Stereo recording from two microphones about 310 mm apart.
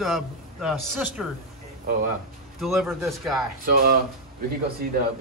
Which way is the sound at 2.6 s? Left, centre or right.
Centre.